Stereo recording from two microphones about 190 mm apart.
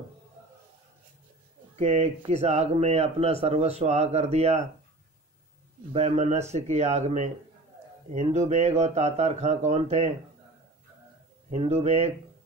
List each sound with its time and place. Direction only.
1.8 s speech: 35° right (ahead or behind)
5.9 s speech: 35° right (ahead or behind)
11.5 s speech: 35° right (ahead or behind)